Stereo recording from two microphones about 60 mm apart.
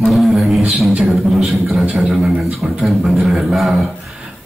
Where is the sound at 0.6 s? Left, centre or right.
Centre.